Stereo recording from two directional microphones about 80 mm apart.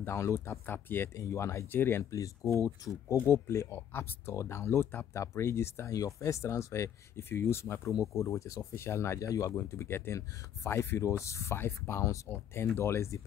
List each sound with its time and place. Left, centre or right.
0.0 s speech: left
2.0 s speech: left